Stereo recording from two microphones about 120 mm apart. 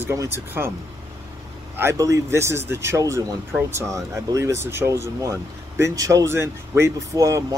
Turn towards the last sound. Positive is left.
turn(degrees=-25)  # may be behind; listen again after turning